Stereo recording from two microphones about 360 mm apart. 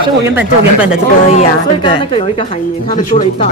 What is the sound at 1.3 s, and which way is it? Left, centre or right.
A woman's voice, centre.